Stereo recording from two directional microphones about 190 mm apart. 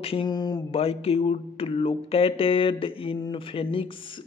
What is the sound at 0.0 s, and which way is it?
Speech, 25° left (ahead or behind).